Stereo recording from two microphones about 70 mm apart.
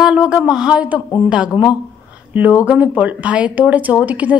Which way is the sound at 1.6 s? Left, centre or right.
Right.